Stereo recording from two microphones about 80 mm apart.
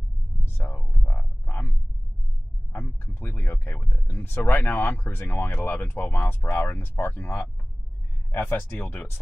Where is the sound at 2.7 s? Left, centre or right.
Left.